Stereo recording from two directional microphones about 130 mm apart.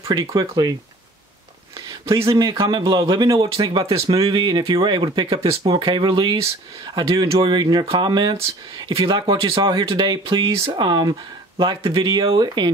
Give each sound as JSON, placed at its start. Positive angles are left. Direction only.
{"t": 0.1, "sound": "speech", "side_deg": -30}
{"t": 2.0, "sound": "speech", "side_deg": -25}
{"t": 2.5, "sound": "speech", "side_deg": -40}
{"t": 10.8, "sound": "speech", "side_deg": -35}